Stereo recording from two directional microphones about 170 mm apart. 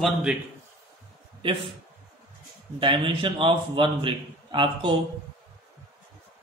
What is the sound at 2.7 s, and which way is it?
A man's voice, 30° right (ahead or behind).